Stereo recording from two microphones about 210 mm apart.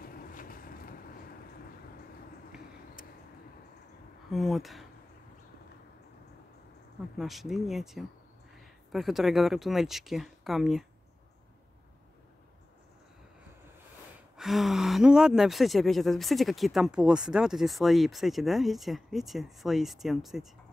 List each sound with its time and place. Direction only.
0.0 s vehicle: 45° left (ahead or behind)
4.3 s speech: centre (ahead or behind)
7.2 s speech: centre (ahead or behind)
14.3 s speech: centre (ahead or behind)